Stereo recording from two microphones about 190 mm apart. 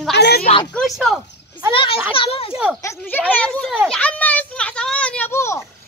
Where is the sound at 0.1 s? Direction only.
60° left (ahead or behind).